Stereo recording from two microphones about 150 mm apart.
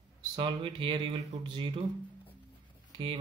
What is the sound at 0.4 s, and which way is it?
Speech, 35° right (ahead or behind).